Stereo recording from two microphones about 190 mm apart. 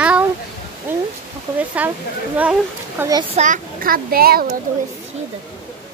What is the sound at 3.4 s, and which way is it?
A child's voice, 45° right (ahead or behind).